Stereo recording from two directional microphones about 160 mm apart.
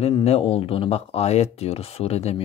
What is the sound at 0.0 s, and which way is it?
A man's voice, 40° left (ahead or behind).